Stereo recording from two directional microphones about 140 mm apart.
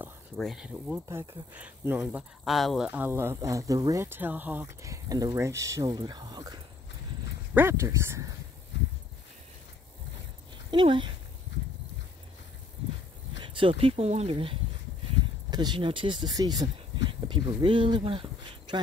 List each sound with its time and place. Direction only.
0.4 s speech: centre (ahead or behind)
1.0 s speech: 20° right (ahead or behind)
1.5 s speech: 10° right (ahead or behind)
2.9 s speech: 15° right (ahead or behind); by 6.6 s 30° right (ahead or behind)
7.5 s speech: 20° right (ahead or behind)
10.7 s speech: 35° right (ahead or behind)
13.4 s speech: 35° right (ahead or behind)